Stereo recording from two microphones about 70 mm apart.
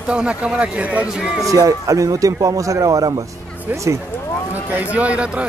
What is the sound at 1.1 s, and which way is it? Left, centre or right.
Speech, centre.